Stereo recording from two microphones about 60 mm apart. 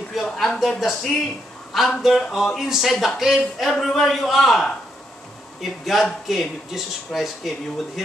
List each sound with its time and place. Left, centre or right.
0.1 s a man's voice: centre